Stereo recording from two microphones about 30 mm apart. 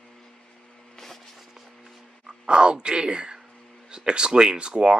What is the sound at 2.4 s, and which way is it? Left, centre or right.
Speech, right.